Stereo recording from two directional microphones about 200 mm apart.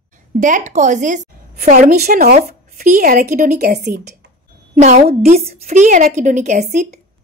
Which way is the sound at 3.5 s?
55° right (ahead or behind).